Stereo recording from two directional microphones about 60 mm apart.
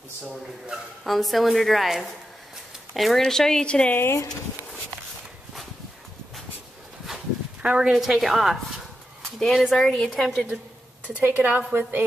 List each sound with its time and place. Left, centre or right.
0.3 s a woman's voice: centre
3.9 s speech: left
7.6 s a woman's voice: centre
11.1 s speech: right